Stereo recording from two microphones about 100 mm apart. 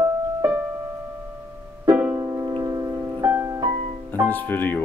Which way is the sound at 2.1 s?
30° right (ahead or behind).